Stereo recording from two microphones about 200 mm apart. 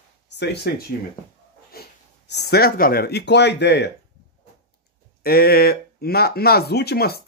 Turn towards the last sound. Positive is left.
turn(degrees=50)  # may be behind; listen again after turning